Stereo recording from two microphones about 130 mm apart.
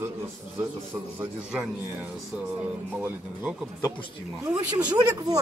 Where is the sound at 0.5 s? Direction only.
20° right (ahead or behind).